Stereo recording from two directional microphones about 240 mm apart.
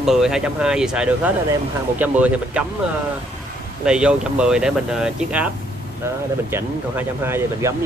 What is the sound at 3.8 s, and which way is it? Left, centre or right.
Speech, centre.